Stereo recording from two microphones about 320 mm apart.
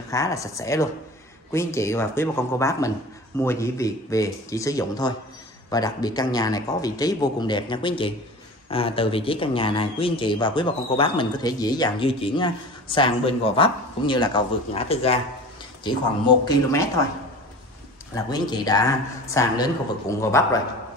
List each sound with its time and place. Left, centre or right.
0.1 s speech: centre
18.1 s speech: centre